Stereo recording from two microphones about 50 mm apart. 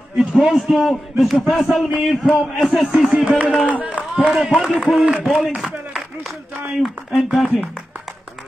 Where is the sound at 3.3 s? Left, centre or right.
Right.